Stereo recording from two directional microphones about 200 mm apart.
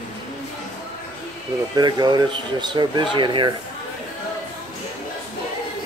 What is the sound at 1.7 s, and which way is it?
Speech, 20° right (ahead or behind).